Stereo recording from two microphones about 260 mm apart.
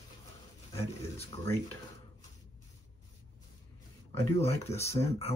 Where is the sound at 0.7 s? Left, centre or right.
Left.